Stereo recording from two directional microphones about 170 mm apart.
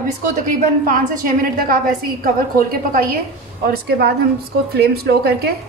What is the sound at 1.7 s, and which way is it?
A woman's voice, 60° right (ahead or behind).